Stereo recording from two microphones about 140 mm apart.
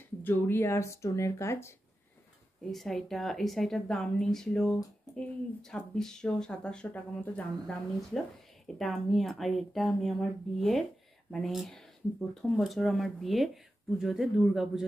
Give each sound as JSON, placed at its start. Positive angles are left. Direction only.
{"t": 0.2, "sound": "speech", "side_deg": 15}
{"t": 2.7, "sound": "a woman's voice", "side_deg": 0}